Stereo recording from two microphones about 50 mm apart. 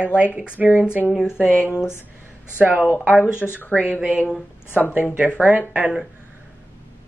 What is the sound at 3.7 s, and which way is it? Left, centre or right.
Speech, left.